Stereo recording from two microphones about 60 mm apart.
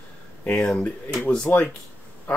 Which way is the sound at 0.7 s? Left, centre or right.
Centre.